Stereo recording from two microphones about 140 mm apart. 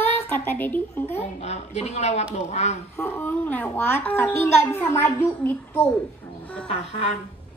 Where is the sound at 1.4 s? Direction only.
50° left (ahead or behind).